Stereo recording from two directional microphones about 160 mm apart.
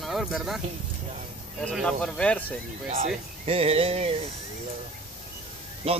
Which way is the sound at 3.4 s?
40° right (ahead or behind).